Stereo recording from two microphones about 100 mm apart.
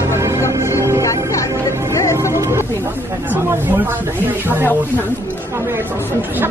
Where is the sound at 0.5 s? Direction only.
25° right (ahead or behind).